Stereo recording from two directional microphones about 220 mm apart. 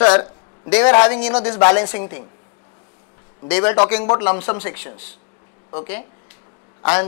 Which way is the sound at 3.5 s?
10° left (ahead or behind).